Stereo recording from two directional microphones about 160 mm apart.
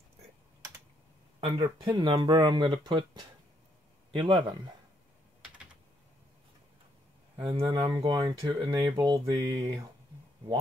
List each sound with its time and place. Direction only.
1.4 s speech: 25° right (ahead or behind)
7.3 s speech: 35° right (ahead or behind)